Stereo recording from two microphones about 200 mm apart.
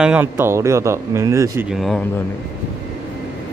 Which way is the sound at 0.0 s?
5° right (ahead or behind).